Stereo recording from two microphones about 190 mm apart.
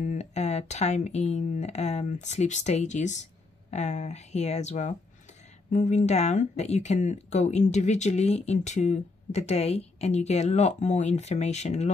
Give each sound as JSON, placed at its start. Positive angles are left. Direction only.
{"t": 0.0, "sound": "speech", "side_deg": 35}